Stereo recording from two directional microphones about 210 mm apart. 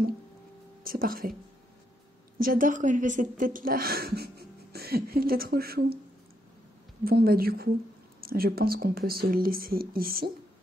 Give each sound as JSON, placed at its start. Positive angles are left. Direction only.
{"t": 0.8, "sound": "speech", "side_deg": -45}
{"t": 2.3, "sound": "speech", "side_deg": -40}
{"t": 7.1, "sound": "speech", "side_deg": -45}